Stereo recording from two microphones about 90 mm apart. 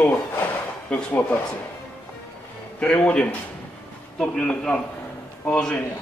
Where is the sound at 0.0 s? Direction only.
15° left (ahead or behind).